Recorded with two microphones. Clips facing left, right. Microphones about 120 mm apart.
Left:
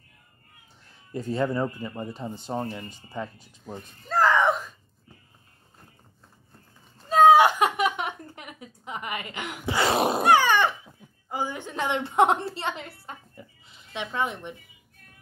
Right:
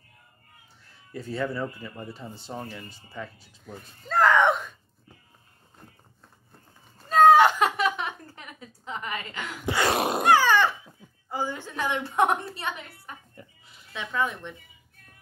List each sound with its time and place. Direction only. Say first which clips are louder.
1.1 s speech: left 4 dB; 20° left (ahead or behind)
2.5 s speech: left 6 dB; 30° left (ahead or behind)
2.8 s speech: left 4 dB; 20° left (ahead or behind)
4.1 s a sound: right 1 dB; centre (ahead or behind)
7.2 s a sound: even; 10° left (ahead or behind)
10.2 s a child's voice: right 1 dB; 15° left (ahead or behind)